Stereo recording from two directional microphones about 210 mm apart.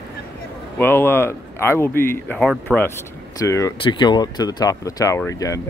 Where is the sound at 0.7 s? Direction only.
10° left (ahead or behind).